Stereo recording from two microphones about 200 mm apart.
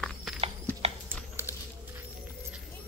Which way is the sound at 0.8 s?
30° right (ahead or behind).